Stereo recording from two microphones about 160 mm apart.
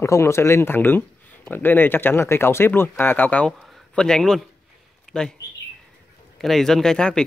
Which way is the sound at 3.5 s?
Centre (ahead or behind).